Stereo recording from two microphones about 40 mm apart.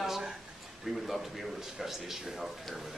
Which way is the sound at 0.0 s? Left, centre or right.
Centre.